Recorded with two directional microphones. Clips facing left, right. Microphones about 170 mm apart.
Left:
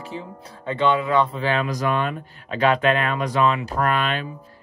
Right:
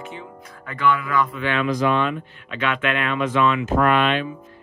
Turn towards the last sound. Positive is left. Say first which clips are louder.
# right 4 dB
turn(degrees=40)  # may be behind; listen again after turning